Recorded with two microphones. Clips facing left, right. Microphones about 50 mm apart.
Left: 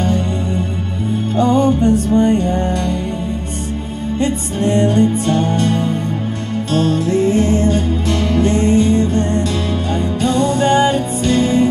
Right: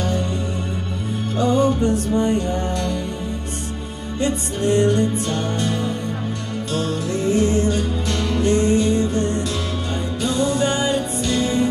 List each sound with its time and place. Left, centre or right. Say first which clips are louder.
1.3 s music: left 4 dB; left
4.2 s music: left 3 dB; left
8.1 s music: left 4 dB; left